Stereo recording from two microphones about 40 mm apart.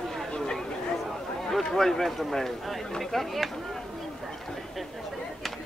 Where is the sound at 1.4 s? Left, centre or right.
Centre.